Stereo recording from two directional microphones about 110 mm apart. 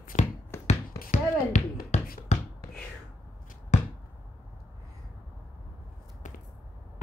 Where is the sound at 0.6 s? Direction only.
90° left.